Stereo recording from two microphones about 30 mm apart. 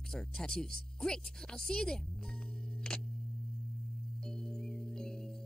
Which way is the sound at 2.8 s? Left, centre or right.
Left.